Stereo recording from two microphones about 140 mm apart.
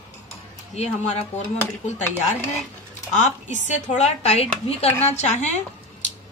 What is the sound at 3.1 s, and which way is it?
A woman's voice, 60° left (ahead or behind).